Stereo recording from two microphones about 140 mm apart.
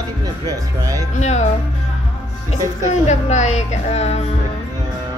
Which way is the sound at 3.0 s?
55° left (ahead or behind).